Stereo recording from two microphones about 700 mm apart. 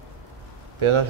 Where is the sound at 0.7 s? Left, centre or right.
Right.